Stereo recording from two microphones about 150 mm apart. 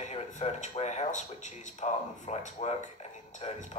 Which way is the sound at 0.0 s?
45° left (ahead or behind).